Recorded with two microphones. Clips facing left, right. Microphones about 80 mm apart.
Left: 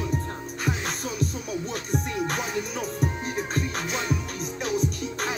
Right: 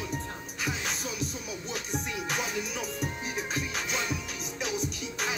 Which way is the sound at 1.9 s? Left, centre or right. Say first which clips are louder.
Left 6 dB; centre.